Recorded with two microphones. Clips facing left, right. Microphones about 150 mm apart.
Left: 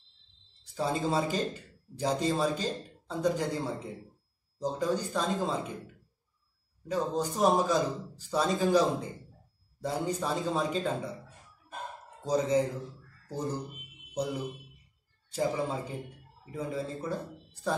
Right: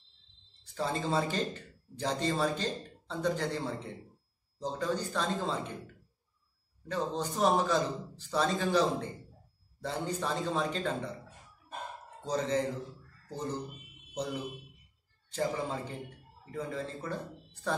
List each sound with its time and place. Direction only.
0.7 s a man's voice: 10° left (ahead or behind)
7.3 s a man's voice: 10° left (ahead or behind)
12.2 s a man's voice: 10° left (ahead or behind)